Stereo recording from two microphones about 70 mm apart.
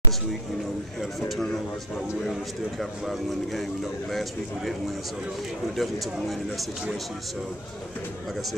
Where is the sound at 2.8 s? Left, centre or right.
Centre.